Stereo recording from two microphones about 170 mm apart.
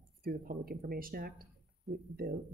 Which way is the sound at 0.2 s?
60° right (ahead or behind).